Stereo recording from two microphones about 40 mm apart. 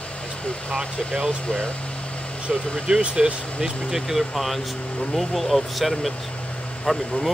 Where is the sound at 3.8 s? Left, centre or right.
Centre.